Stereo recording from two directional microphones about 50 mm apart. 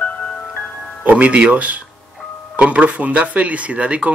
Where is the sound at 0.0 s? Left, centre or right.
Left.